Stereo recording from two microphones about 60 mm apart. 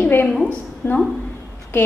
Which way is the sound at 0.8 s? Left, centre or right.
Left.